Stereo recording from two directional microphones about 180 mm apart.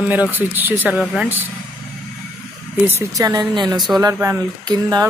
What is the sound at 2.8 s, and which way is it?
Speech, 15° right (ahead or behind).